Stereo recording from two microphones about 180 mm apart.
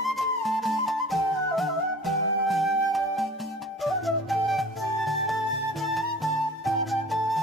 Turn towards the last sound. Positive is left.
turn(degrees=0)  # may be behind; listen again after turning